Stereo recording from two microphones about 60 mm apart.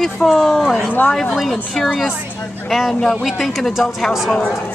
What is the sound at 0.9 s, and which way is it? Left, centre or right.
Speech, left.